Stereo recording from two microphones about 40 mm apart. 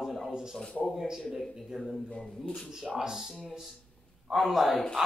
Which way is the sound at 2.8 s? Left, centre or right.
Centre.